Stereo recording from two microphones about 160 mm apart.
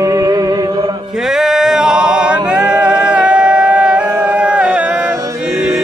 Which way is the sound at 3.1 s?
5° right (ahead or behind).